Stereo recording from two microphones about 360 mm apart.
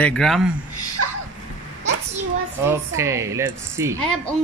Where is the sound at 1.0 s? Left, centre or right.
Right.